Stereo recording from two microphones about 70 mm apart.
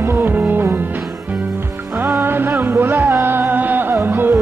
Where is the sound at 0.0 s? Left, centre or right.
Right.